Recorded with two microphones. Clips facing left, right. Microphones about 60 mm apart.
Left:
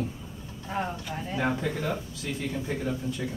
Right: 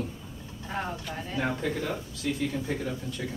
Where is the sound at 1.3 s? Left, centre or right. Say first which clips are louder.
Left 1 dB; centre.